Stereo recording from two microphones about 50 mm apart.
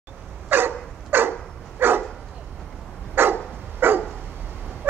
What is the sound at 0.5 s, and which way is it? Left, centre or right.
Dog, right.